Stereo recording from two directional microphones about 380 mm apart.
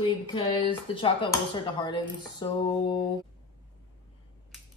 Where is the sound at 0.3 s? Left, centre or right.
Centre.